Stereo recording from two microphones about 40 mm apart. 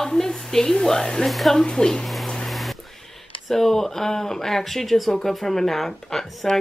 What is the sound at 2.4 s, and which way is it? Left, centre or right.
Music, centre.